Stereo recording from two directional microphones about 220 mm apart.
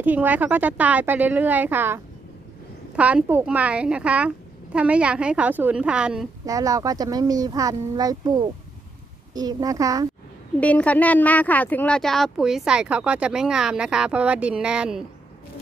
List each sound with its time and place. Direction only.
0.0 s speech: 10° right (ahead or behind)
3.0 s speech: 5° right (ahead or behind)
6.4 s speech: 15° right (ahead or behind)
10.6 s speech: 5° left (ahead or behind)